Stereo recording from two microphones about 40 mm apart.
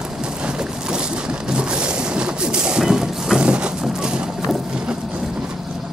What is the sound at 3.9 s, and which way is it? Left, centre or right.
Clip-clop, right.